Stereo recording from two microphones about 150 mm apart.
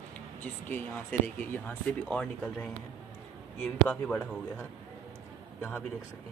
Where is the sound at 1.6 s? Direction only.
10° left (ahead or behind).